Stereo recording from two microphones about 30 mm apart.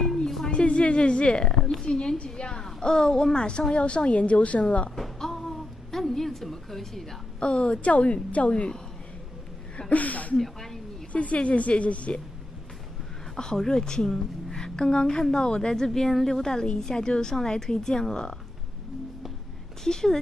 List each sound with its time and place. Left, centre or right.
0.5 s a woman's voice: left
1.5 s a sound: centre
2.2 s a woman's voice: left
4.9 s a sound: centre
5.9 s a woman's voice: centre
7.3 s a woman's voice: left
7.8 s a woman's voice: left
8.5 s a woman's voice: left
9.8 s speech: left
10.4 s speech: centre
11.3 s a woman's voice: left
13.6 s a woman's voice: centre
19.8 s a woman's voice: centre